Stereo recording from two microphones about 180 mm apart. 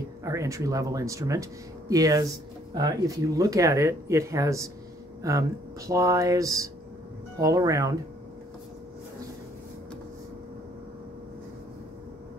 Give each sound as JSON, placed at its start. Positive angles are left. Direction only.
{"t": 0.2, "sound": "speech", "side_deg": -15}